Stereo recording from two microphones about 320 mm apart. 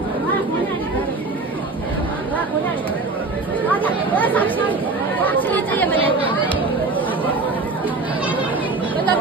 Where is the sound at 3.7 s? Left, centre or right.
Centre.